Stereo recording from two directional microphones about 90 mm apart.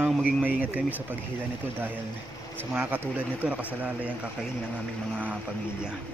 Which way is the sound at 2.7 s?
20° right (ahead or behind).